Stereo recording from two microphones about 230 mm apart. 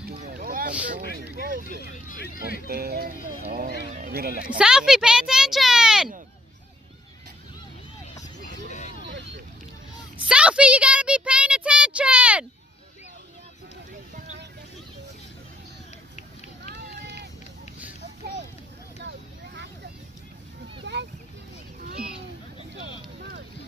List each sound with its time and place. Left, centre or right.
0.1 s boat: right
0.8 s speech: right
1.8 s speech: left
2.7 s speech: right
4.5 s speech: centre
10.1 s a sound: centre
16.7 s run: right
18.9 s vehicle: right
20.9 s a sound: right